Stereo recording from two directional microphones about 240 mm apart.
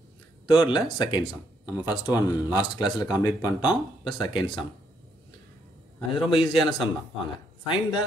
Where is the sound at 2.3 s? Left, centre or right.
Centre.